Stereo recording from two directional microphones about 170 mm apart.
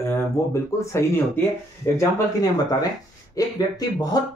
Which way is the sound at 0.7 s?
20° left (ahead or behind).